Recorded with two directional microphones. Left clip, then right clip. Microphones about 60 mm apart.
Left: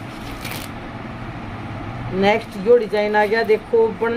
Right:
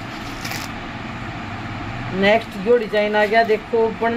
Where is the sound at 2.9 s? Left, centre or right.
Left.